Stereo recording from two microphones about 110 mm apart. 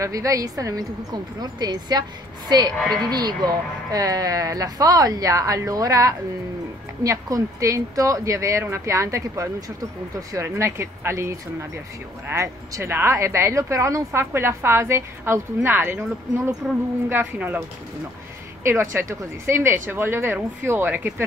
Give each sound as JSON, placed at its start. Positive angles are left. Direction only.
{"t": 0.0, "sound": "speech", "side_deg": -30}